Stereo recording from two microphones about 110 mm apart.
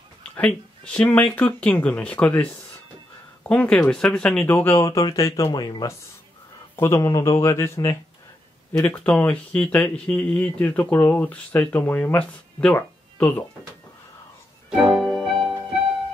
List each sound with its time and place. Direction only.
0.4 s speech: 10° left (ahead or behind)
3.4 s speech: 10° left (ahead or behind); by 5.0 s 25° left (ahead or behind)
5.4 s speech: 40° left (ahead or behind); by 12.7 s 10° left (ahead or behind)
12.7 s a sound: 15° left (ahead or behind)
14.8 s music: centre (ahead or behind)